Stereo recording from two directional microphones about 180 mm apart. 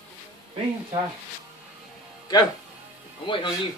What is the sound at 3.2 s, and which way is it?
Speech, 25° left (ahead or behind).